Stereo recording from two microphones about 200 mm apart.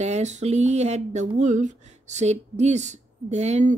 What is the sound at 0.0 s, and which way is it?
Speech, 35° right (ahead or behind).